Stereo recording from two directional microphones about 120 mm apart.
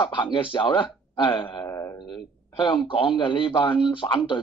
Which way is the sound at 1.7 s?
25° left (ahead or behind).